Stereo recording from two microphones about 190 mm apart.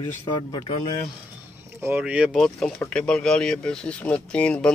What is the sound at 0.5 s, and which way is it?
Speech, 30° left (ahead or behind).